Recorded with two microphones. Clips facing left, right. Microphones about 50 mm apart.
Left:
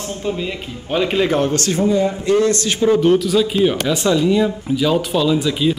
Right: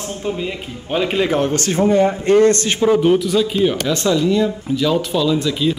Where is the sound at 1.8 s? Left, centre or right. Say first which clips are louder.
Right 4 dB; right.